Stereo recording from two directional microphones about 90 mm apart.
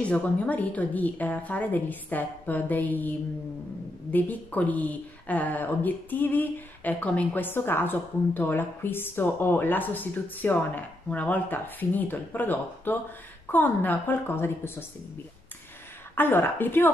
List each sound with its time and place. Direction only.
0.0 s a woman's voice: 15° left (ahead or behind)
16.2 s a woman's voice: 20° left (ahead or behind)